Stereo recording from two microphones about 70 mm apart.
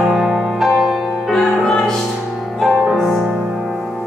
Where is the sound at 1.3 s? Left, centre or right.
Centre.